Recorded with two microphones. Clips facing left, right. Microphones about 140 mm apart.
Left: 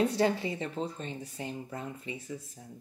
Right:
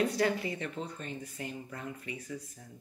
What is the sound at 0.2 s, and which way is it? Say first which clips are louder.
Speech: left 2 dB; 25° left (ahead or behind).